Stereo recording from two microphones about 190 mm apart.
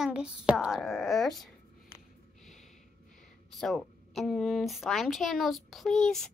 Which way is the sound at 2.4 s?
Centre (ahead or behind).